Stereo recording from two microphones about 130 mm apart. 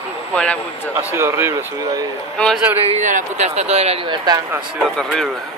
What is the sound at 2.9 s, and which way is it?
Speech, 70° right (ahead or behind).